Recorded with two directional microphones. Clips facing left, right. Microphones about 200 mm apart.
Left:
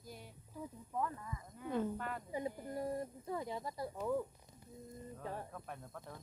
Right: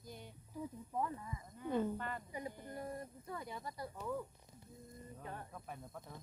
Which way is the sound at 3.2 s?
25° left (ahead or behind).